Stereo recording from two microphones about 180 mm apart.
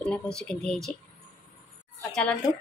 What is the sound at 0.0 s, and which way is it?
Speech, 5° left (ahead or behind).